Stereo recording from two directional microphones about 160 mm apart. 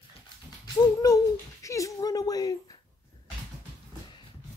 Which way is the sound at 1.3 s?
20° left (ahead or behind).